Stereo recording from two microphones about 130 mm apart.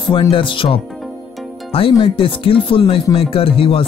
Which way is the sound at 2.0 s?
45° left (ahead or behind).